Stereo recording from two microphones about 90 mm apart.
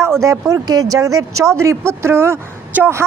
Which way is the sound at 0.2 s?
35° right (ahead or behind).